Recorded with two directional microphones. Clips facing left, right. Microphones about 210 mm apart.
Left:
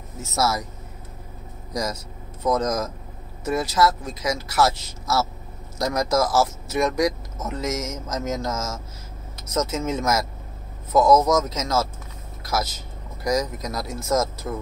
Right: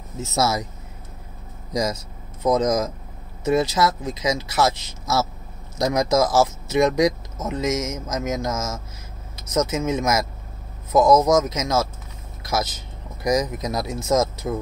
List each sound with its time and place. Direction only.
0.2 s speech: 20° right (ahead or behind)
1.7 s speech: 20° right (ahead or behind)